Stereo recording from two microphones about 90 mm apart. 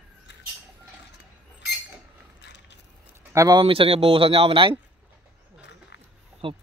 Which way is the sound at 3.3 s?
30° right (ahead or behind).